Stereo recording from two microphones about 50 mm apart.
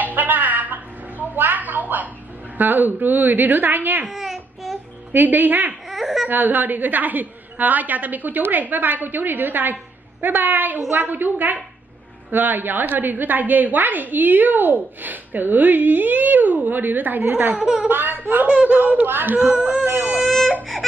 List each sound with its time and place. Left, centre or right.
0.0 s a sound: right
2.5 s a woman's voice: right
4.1 s babbling: centre
5.1 s a woman's voice: right
5.9 s a sound: centre
6.2 s a woman's voice: right
17.6 s speech: centre
17.8 s a woman's voice: right
18.5 s speech: right
18.8 s a woman's voice: right
20.2 s baby cry: centre